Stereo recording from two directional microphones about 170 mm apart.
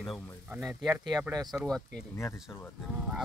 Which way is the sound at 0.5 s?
5° right (ahead or behind).